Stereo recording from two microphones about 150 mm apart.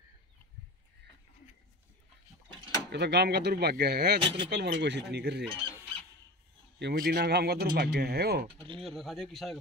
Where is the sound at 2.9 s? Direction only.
90° right.